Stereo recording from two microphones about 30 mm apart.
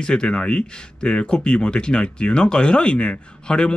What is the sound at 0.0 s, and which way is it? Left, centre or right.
Speech, left.